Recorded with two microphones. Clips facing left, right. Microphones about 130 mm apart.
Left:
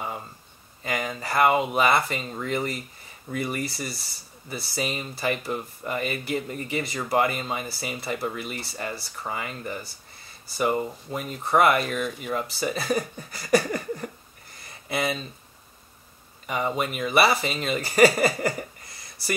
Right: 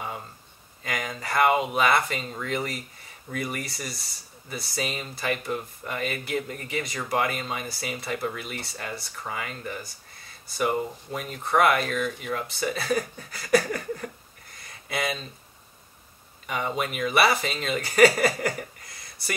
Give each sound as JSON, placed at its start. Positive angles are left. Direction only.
{"t": 0.8, "sound": "speech", "side_deg": 5}
{"t": 13.6, "sound": "a sound", "side_deg": 20}
{"t": 14.9, "sound": "speech", "side_deg": 0}
{"t": 16.4, "sound": "speech", "side_deg": 0}